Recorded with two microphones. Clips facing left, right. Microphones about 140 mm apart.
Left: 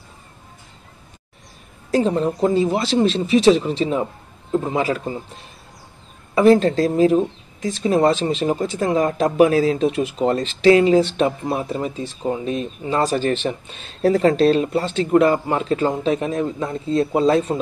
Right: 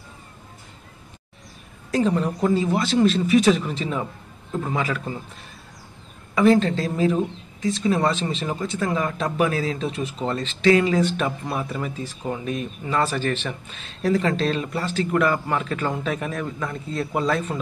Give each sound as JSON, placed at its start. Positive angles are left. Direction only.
{"t": 1.9, "sound": "speech", "side_deg": 30}